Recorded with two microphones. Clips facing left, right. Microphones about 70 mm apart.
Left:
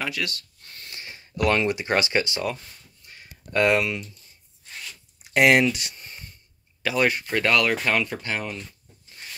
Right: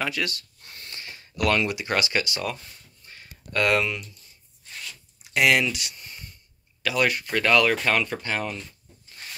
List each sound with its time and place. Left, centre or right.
0.0 s speech: centre
0.8 s speech: centre
3.5 s speech: centre
5.3 s speech: left
7.4 s speech: centre